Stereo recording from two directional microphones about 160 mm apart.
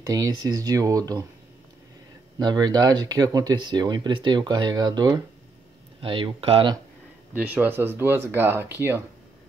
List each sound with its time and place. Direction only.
0.0 s speech: 25° right (ahead or behind)
2.3 s speech: 25° right (ahead or behind)
7.3 s speech: 10° right (ahead or behind)